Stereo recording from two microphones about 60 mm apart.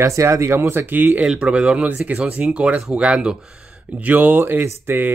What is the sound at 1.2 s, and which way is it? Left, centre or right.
Speech, centre.